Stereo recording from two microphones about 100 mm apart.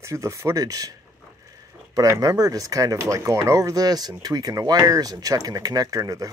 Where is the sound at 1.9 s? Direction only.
35° right (ahead or behind).